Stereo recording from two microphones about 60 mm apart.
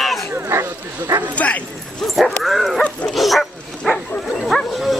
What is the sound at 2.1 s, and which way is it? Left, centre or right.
Dog, centre.